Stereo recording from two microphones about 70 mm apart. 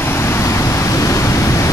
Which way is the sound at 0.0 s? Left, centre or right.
Left.